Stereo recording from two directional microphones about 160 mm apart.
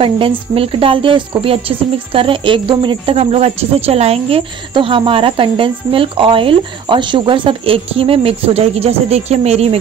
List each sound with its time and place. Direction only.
0.0 s speech: 35° right (ahead or behind)